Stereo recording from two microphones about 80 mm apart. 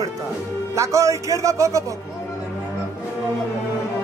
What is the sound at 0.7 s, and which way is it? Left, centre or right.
Speech, right.